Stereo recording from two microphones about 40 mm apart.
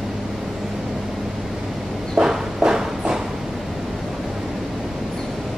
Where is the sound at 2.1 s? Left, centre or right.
Centre.